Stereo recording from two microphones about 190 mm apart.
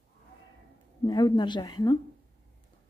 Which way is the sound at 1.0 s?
20° left (ahead or behind).